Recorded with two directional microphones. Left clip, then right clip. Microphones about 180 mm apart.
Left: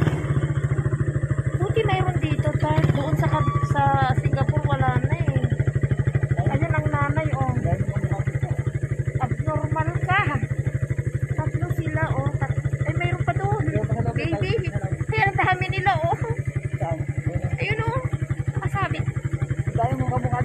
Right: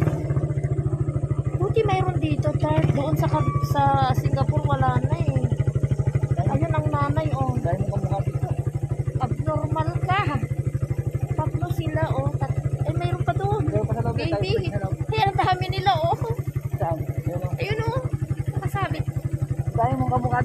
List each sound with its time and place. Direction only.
1.8 s vehicle: 15° right (ahead or behind)
3.7 s speech: 15° right (ahead or behind)
4.4 s vehicle: 10° right (ahead or behind)
6.7 s a sound: 10° right (ahead or behind)
9.8 s vehicle: 10° right (ahead or behind)
14.2 s speech: 10° right (ahead or behind)
15.1 s a sound: 10° right (ahead or behind)